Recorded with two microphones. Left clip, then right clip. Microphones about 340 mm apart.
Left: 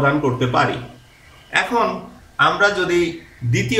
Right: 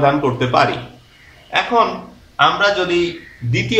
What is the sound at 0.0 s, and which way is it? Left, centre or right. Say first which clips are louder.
Speech: right 3 dB; centre.